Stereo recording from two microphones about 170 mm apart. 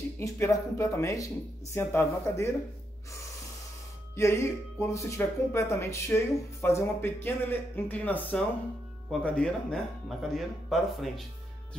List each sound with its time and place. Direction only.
0.2 s speech: 15° left (ahead or behind)
4.1 s speech: 15° left (ahead or behind); by 11.2 s centre (ahead or behind)